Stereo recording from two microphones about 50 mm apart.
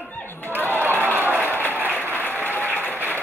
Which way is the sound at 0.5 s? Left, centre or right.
Right.